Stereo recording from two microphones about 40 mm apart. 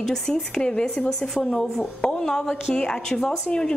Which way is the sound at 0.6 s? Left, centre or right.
Left.